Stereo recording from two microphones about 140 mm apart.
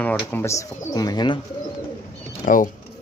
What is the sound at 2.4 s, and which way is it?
Speech, 75° left (ahead or behind).